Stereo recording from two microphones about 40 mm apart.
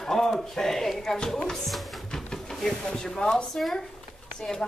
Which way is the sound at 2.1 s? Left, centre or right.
Centre.